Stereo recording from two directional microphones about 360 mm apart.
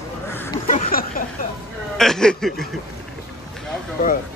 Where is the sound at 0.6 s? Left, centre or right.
Left.